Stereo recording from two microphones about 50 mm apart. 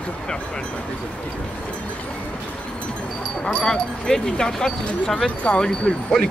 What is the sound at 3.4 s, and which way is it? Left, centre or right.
Speech, centre.